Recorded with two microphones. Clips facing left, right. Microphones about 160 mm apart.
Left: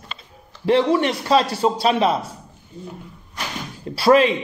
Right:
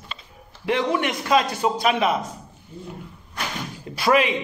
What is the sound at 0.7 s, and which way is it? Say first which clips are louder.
Speech: left 5 dB; 15° right (ahead or behind).